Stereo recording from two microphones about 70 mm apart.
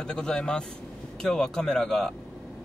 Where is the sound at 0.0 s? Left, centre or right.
Centre.